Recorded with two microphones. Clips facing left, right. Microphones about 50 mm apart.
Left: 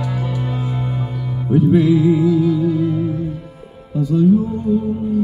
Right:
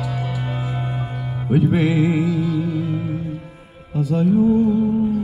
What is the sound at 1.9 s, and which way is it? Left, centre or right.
Music, right.